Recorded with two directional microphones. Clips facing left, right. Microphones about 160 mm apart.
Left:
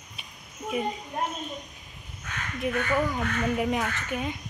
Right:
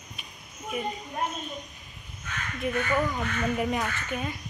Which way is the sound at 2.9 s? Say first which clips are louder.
Left 1 dB; 10° left (ahead or behind).